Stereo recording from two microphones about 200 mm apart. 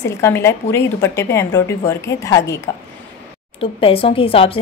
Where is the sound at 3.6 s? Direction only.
25° left (ahead or behind).